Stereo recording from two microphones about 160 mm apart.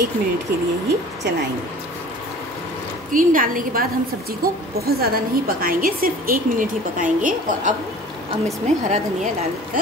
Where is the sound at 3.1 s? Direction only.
60° right (ahead or behind).